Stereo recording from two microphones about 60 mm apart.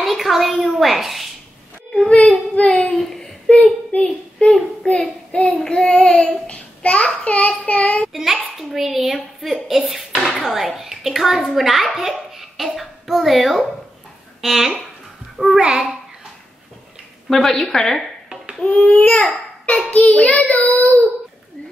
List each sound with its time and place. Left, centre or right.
0.0 s a sound: centre
2.0 s a child's voice: centre
3.0 s a sound: centre
3.4 s a sound: centre
4.5 s a child's voice: centre
5.3 s child singing: left
5.6 s a child's voice: centre
5.9 s child singing: left
7.2 s a child's voice: left
8.1 s a child's voice: centre
17.3 s a child's voice: centre
18.9 s a child's voice: left